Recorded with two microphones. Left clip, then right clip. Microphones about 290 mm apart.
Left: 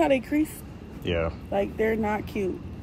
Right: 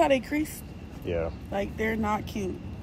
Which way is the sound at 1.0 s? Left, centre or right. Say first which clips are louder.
Left 3 dB; left.